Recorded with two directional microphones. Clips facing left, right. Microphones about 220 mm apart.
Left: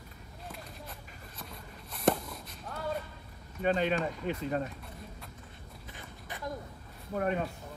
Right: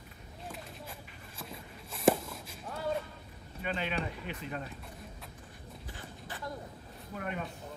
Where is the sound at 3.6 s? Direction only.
45° left (ahead or behind).